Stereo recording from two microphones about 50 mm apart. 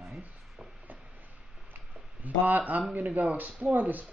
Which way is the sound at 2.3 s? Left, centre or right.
Right.